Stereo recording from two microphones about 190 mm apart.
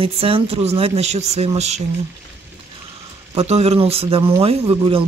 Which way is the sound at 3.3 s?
35° right (ahead or behind).